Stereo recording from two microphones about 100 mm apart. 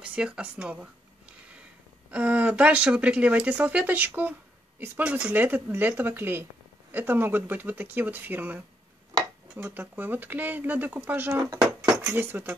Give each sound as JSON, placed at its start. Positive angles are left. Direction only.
{"t": 0.0, "sound": "speech", "side_deg": -10}
{"t": 2.0, "sound": "speech", "side_deg": -15}
{"t": 9.7, "sound": "speech", "side_deg": -20}
{"t": 11.6, "sound": "dishes", "side_deg": -5}
{"t": 12.2, "sound": "speech", "side_deg": -20}